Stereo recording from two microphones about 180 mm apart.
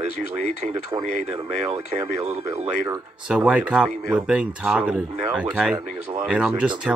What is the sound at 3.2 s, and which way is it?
Speech, 5° right (ahead or behind).